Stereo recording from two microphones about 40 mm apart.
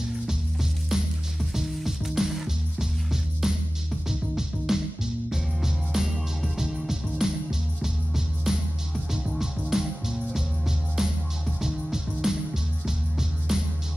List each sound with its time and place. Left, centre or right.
1.4 s music: centre
6.6 s music: centre
7.2 s music: centre
8.5 s music: centre
13.5 s music: centre